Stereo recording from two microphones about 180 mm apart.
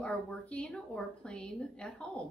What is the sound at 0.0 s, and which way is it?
Speech, 5° left (ahead or behind).